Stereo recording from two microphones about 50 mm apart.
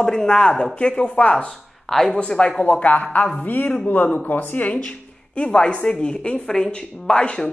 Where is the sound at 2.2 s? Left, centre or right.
Centre.